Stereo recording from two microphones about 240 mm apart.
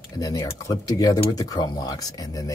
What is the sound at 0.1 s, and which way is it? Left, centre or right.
Speech, centre.